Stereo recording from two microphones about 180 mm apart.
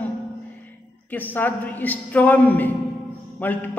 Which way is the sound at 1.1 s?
10° left (ahead or behind).